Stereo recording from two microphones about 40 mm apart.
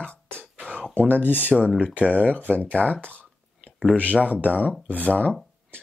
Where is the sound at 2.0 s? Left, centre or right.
Right.